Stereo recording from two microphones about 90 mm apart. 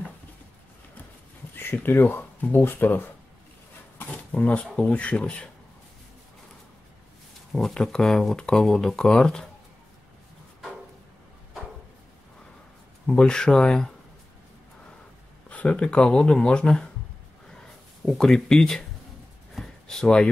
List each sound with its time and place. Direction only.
1.6 s speech: 25° left (ahead or behind)
7.5 s speech: 5° left (ahead or behind)
13.0 s speech: 5° left (ahead or behind)
15.5 s speech: 15° left (ahead or behind)
18.0 s speech: 5° left (ahead or behind)
19.5 s a sound: 5° left (ahead or behind)